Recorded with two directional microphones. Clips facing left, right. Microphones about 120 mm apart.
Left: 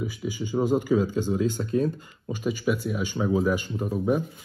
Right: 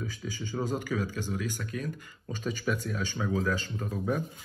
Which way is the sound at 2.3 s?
10° left (ahead or behind).